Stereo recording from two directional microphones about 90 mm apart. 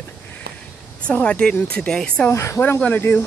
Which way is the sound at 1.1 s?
15° left (ahead or behind).